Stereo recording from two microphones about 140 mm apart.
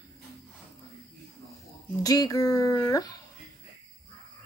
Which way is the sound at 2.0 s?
25° left (ahead or behind).